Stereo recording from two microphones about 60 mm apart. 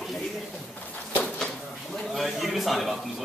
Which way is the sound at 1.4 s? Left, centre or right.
Centre.